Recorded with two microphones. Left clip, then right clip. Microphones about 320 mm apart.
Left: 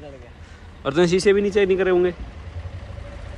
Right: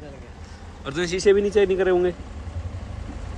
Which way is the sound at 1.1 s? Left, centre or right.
Centre.